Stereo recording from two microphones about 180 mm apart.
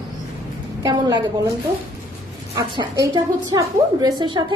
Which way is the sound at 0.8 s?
25° right (ahead or behind).